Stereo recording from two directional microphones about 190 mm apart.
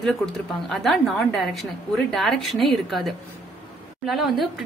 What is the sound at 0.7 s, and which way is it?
A woman's voice, centre (ahead or behind).